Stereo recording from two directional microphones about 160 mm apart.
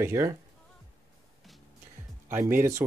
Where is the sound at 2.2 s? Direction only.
15° right (ahead or behind).